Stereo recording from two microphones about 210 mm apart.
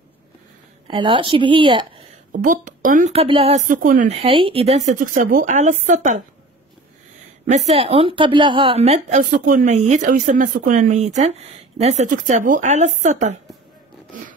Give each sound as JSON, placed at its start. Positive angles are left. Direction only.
{"t": 0.8, "sound": "a woman's voice", "side_deg": -25}
{"t": 2.3, "sound": "a woman's voice", "side_deg": -40}
{"t": 7.4, "sound": "a woman's voice", "side_deg": -30}